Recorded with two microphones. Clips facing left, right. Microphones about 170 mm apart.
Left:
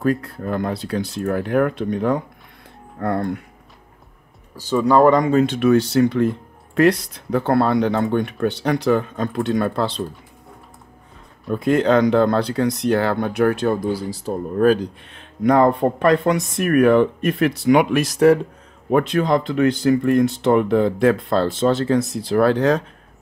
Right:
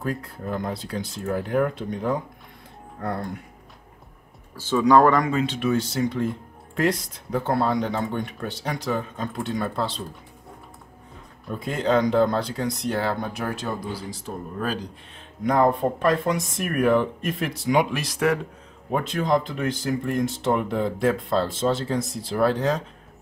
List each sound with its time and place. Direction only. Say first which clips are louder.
0.0 s speech: left 8 dB; 70° left (ahead or behind)
4.6 s speech: left 2 dB; 10° left (ahead or behind)
5.3 s speech: left 8 dB; 45° left (ahead or behind)
5.6 s speech: left 8 dB; 65° left (ahead or behind)
11.6 s speech: left 6 dB; 70° left (ahead or behind)
14.3 s speech: left 9 dB; 40° left (ahead or behind)
14.6 s speech: left 14 dB; 60° left (ahead or behind)
18.0 s speech: left 9 dB; 40° left (ahead or behind)
18.9 s speech: left 6 dB; 70° left (ahead or behind)